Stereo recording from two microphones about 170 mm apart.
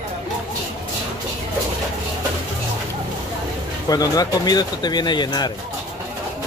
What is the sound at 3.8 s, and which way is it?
Speech, 20° left (ahead or behind).